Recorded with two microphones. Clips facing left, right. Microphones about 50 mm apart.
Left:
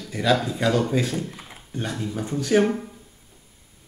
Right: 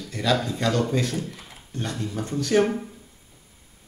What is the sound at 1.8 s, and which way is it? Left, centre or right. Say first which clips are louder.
Speech: left 1 dB; centre.